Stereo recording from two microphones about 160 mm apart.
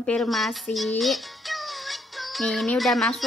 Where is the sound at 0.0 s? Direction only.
5° left (ahead or behind).